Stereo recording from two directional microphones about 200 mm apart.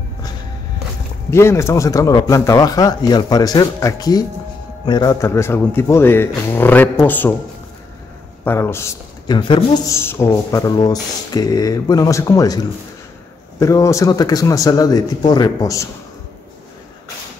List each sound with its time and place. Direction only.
1.3 s speech: 15° left (ahead or behind)
8.5 s a man's voice: 10° left (ahead or behind)
9.4 s speech: 25° left (ahead or behind)
9.9 s speech: 15° left (ahead or behind)